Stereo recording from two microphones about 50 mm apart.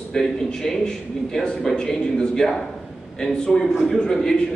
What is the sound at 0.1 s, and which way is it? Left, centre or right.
A man's voice, centre.